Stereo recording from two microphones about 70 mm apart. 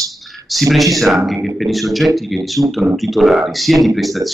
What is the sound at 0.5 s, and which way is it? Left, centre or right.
Speech, centre.